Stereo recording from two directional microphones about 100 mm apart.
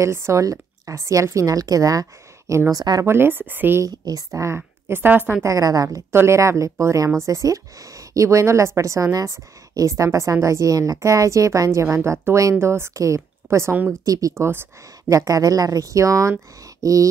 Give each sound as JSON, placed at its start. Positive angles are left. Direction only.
{"t": 0.0, "sound": "a woman's voice", "side_deg": -30}
{"t": 2.8, "sound": "a woman's voice", "side_deg": -45}
{"t": 3.1, "sound": "speech", "side_deg": -20}
{"t": 3.8, "sound": "a woman's voice", "side_deg": -40}
{"t": 4.6, "sound": "a woman's voice", "side_deg": -20}
{"t": 5.4, "sound": "a woman's voice", "side_deg": -35}
{"t": 15.1, "sound": "a woman's voice", "side_deg": -35}